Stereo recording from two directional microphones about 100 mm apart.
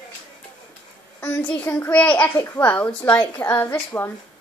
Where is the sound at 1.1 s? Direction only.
20° left (ahead or behind).